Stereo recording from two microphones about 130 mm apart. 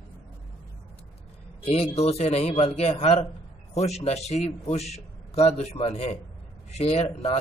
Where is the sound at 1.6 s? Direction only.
45° left (ahead or behind).